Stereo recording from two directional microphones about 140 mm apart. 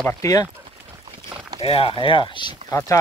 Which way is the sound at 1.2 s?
35° right (ahead or behind).